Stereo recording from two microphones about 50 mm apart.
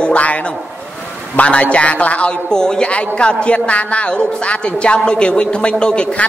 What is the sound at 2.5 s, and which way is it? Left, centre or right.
A man's voice, centre.